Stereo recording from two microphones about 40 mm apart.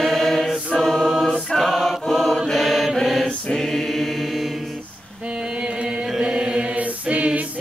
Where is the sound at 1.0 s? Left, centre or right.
Centre.